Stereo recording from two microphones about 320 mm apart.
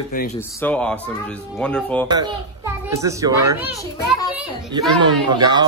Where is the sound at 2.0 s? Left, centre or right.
Centre.